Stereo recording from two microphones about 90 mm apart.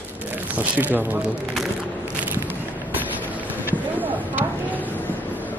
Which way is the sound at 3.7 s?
20° right (ahead or behind).